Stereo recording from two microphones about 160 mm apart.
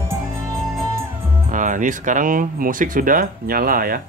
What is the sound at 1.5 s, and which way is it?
Speech, 55° right (ahead or behind).